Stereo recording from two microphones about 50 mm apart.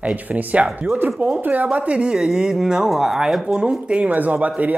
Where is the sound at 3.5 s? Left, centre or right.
Centre.